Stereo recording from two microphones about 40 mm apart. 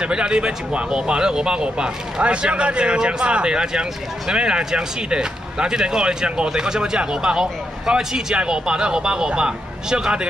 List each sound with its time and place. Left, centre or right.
0.0 s speech: right